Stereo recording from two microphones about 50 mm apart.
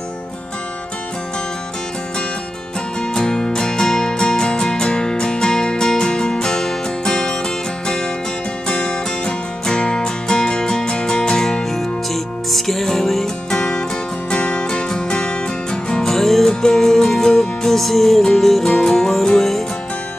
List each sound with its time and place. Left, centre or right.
3.2 s music: centre
8.6 s music: centre